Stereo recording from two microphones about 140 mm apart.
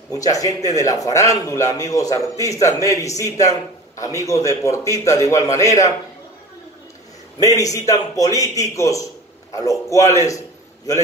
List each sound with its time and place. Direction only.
0.1 s a man's voice: 25° left (ahead or behind)
7.3 s a man's voice: 25° left (ahead or behind)